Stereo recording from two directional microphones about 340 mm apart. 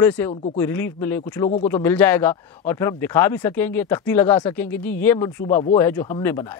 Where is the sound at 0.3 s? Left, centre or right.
Centre.